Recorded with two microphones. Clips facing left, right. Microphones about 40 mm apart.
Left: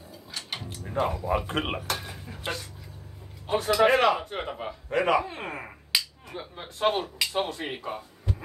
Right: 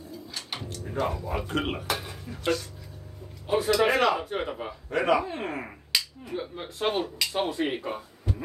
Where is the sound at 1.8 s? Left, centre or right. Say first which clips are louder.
Right 1 dB; centre.